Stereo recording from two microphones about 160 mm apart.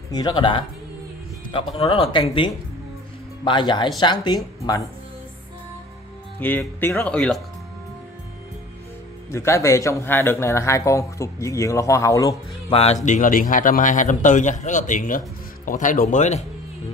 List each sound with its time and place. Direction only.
0.1 s a man's voice: 25° left (ahead or behind)
6.4 s speech: 10° left (ahead or behind)
7.2 s speech: 5° left (ahead or behind)
9.3 s a man's voice: 15° left (ahead or behind)
12.6 s a man's voice: 40° left (ahead or behind)